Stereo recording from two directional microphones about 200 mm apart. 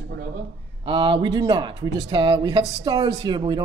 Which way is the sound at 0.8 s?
25° right (ahead or behind).